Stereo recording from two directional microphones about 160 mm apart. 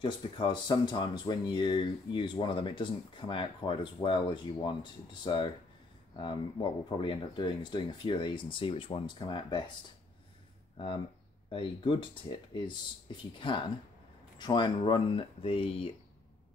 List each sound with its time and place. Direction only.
0.0 s speech: 30° left (ahead or behind)
11.5 s speech: 30° left (ahead or behind)